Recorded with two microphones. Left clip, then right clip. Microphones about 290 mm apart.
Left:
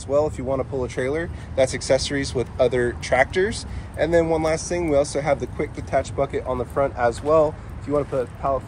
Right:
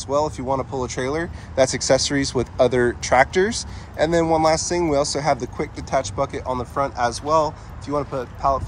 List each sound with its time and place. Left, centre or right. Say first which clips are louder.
0.1 s speech: even; centre